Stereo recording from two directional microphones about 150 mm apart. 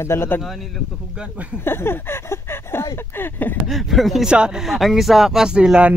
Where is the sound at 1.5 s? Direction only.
15° left (ahead or behind).